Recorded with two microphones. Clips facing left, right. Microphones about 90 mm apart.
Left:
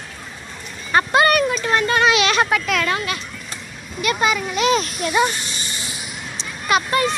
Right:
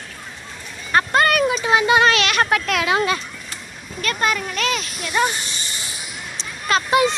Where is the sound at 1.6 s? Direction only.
10° right (ahead or behind).